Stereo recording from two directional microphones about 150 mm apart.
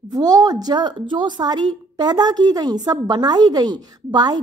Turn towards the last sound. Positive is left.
turn(degrees=-25)  # may be behind; listen again after turning